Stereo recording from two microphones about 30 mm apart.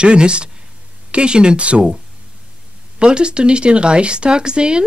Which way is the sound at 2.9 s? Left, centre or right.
Right.